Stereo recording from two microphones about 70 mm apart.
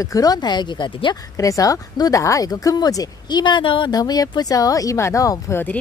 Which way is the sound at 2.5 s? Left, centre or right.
Left.